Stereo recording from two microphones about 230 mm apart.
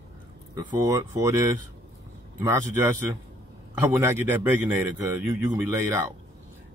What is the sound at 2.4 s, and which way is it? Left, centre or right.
Speech, centre.